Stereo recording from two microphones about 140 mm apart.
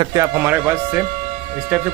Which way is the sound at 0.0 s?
25° right (ahead or behind).